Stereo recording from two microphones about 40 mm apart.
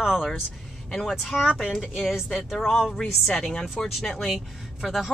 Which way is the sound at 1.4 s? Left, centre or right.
Centre.